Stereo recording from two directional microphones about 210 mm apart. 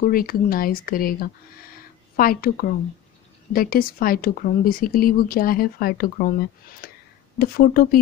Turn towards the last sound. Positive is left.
turn(degrees=45)  # may be behind; listen again after turning